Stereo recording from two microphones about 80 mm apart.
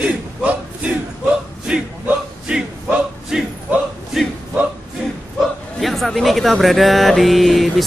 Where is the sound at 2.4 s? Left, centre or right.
Centre.